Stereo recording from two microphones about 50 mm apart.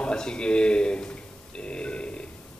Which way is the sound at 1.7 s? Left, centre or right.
Left.